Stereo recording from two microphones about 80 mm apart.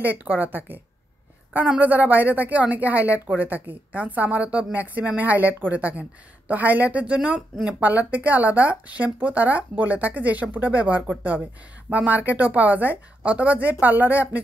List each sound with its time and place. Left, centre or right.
0.0 s speech: right